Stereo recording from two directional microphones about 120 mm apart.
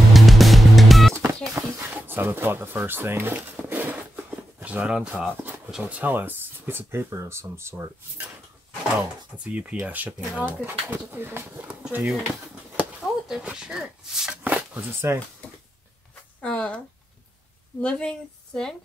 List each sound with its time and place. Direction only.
0.1 s music: centre (ahead or behind)
1.5 s music: 15° right (ahead or behind)
4.6 s speech: 10° right (ahead or behind)
9.4 s speech: 10° right (ahead or behind)
11.8 s speech: 5° right (ahead or behind)
16.3 s speech: 10° left (ahead or behind)